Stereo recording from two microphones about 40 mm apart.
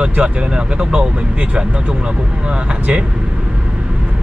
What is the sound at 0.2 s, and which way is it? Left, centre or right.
Speech, right.